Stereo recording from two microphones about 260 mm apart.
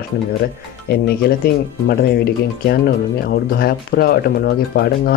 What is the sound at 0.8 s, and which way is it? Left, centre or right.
Speech, left.